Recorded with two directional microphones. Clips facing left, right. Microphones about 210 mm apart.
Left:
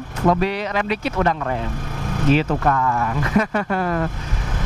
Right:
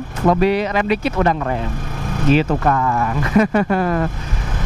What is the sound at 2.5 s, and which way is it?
Speech, 15° right (ahead or behind).